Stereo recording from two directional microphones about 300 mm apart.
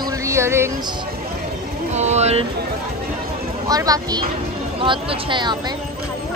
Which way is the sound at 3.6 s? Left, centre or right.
Centre.